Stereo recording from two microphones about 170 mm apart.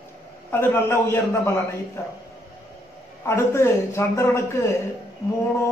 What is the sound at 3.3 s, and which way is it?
A man's voice, 15° left (ahead or behind).